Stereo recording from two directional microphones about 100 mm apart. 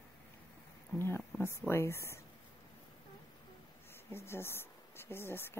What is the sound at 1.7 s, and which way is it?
Speech, 25° left (ahead or behind).